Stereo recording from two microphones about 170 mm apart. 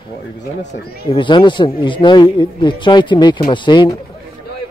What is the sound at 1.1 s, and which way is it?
Speech, 30° left (ahead or behind).